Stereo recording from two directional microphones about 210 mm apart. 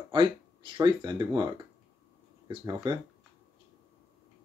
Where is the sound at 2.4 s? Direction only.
20° right (ahead or behind).